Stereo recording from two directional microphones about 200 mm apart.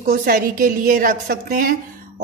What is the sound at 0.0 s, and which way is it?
Speech, 50° right (ahead or behind).